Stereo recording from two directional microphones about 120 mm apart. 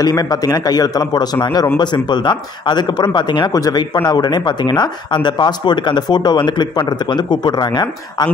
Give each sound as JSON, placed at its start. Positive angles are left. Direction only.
{"t": 0.0, "sound": "speech", "side_deg": 35}